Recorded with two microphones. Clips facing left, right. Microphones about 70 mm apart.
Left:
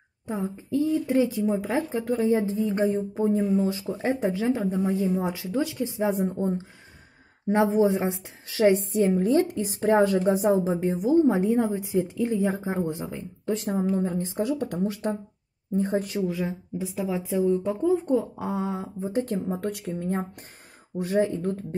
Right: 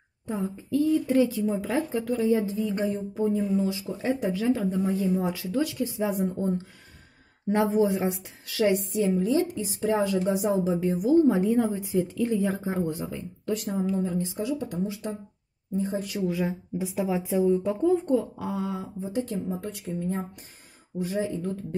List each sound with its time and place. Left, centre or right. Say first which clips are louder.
0.7 s speech: right 1 dB; left
9.0 s a woman's voice: left 3 dB; left
10.9 s a woman's voice: even; left
16.3 s speech: right 1 dB; centre
17.6 s speech: even; centre
18.1 s speech: left 1 dB; left
19.2 s a woman's voice: left 3 dB; left